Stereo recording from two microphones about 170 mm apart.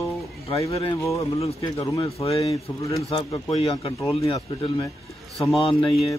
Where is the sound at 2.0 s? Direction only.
35° left (ahead or behind).